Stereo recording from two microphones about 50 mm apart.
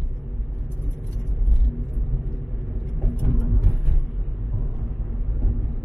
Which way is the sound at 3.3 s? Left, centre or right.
Centre.